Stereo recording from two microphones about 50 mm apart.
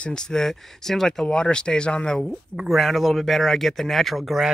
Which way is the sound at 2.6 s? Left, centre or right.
Centre.